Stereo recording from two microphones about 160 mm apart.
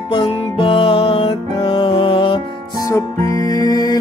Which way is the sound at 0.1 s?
35° left (ahead or behind).